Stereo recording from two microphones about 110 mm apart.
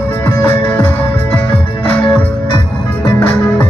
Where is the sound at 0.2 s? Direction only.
20° left (ahead or behind).